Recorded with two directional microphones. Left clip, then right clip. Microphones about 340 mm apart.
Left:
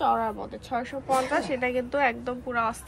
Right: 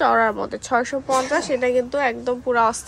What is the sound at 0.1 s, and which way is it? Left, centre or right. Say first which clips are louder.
Speech: right 8 dB; right.